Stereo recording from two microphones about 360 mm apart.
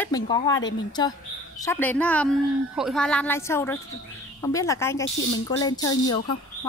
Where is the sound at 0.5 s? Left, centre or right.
Left.